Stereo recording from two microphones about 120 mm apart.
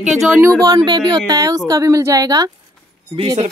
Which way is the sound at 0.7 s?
35° right (ahead or behind).